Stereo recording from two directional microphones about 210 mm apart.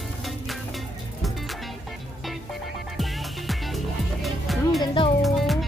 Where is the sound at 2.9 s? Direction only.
Centre (ahead or behind).